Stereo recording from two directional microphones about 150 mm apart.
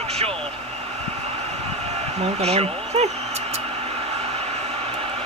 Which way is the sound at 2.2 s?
45° right (ahead or behind).